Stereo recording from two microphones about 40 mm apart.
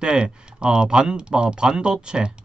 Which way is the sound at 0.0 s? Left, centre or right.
Right.